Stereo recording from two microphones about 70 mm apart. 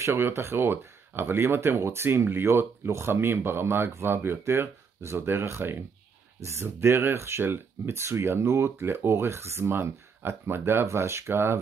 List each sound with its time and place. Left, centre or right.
0.0 s speech: right